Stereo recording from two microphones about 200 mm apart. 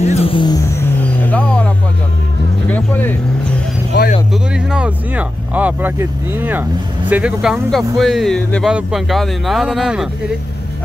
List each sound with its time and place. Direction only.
0.0 s vehicle: 30° left (ahead or behind); by 1.7 s 5° left (ahead or behind)
2.7 s music: 10° left (ahead or behind)
3.9 s a sound: 55° left (ahead or behind)
4.3 s speech: 5° right (ahead or behind)